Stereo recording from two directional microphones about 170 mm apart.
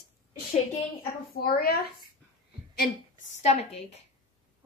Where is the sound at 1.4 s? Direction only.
65° left (ahead or behind).